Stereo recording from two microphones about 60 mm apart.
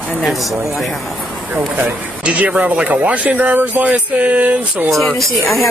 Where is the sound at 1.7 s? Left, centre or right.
Right.